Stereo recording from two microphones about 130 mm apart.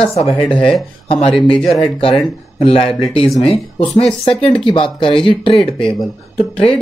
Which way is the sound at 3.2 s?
5° left (ahead or behind).